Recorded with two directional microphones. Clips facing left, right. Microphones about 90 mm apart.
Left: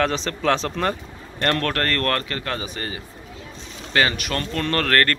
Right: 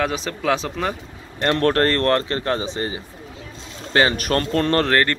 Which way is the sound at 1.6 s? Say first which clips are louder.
Right 6 dB; 30° right (ahead or behind).